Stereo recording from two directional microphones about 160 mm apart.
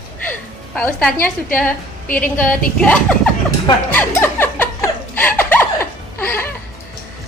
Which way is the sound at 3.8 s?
10° left (ahead or behind).